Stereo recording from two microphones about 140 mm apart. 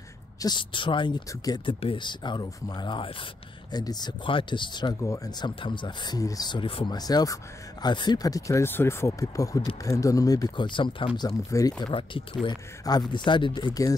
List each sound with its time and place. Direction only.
0.4 s speech: 35° left (ahead or behind)
1.8 s speech: 35° left (ahead or behind)
5.6 s speech: 35° left (ahead or behind)
7.0 s speech: 25° left (ahead or behind)